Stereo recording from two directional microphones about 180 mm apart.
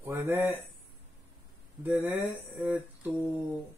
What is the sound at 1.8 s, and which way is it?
Speech, 10° right (ahead or behind).